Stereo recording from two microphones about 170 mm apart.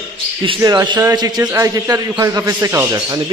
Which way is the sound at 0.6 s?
20° right (ahead or behind).